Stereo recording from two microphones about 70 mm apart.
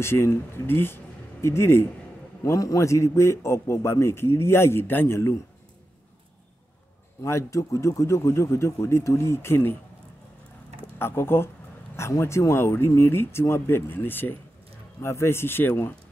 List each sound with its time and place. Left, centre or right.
0.0 s speech: left
2.4 s a man's voice: left
7.2 s a man's voice: left
11.0 s a man's voice: left
15.0 s a man's voice: left